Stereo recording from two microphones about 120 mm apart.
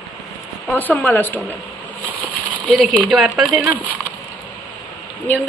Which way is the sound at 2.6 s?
5° left (ahead or behind).